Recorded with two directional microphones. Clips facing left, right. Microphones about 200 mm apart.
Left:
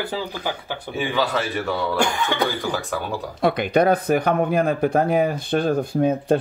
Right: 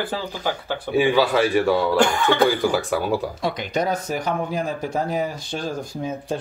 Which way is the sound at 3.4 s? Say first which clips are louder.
Left 9 dB; 55° left (ahead or behind).